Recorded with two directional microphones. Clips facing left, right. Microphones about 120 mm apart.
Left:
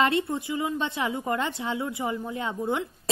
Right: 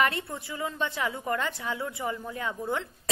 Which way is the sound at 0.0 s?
20° left (ahead or behind).